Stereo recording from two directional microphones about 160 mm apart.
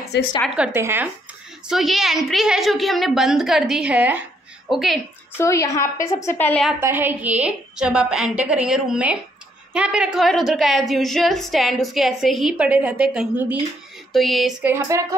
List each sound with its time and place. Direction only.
0.1 s a woman's voice: 90° left
0.7 s a woman's voice: 15° right (ahead or behind)
1.7 s a woman's voice: centre (ahead or behind)
5.4 s a woman's voice: 20° left (ahead or behind)
6.8 s a woman's voice: 15° right (ahead or behind)
14.6 s a sound: 15° right (ahead or behind)